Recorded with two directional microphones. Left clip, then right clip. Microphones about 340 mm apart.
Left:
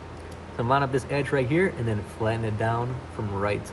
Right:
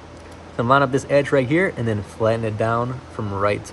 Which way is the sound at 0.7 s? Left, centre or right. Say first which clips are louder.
Right 8 dB; right.